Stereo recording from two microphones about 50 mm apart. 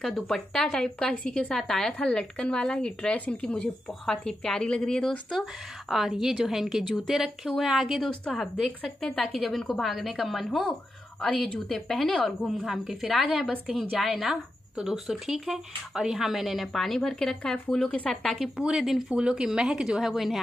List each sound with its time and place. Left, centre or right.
0.0 s a woman's voice: centre
5.3 s a woman's voice: centre
9.2 s a woman's voice: centre
11.1 s speech: centre
11.9 s a woman's voice: centre
12.5 s a woman's voice: centre
14.1 s speech: centre
16.7 s a woman's voice: centre
17.8 s speech: left
18.1 s a woman's voice: centre
19.1 s speech: centre